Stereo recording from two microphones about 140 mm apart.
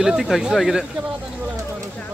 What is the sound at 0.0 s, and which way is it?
Speech, 5° right (ahead or behind).